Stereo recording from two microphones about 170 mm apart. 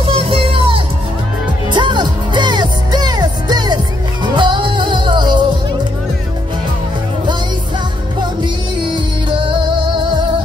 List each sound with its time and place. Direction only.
0.0 s music: 30° right (ahead or behind)
8.9 s music: 30° right (ahead or behind)